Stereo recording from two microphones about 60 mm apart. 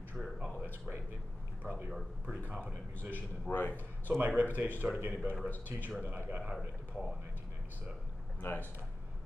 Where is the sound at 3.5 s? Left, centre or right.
Left.